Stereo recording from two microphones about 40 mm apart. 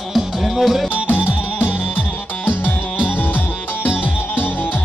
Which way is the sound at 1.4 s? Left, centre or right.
Left.